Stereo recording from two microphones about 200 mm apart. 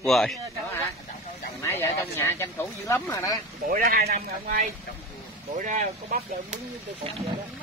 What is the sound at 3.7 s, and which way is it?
Speech, 50° right (ahead or behind).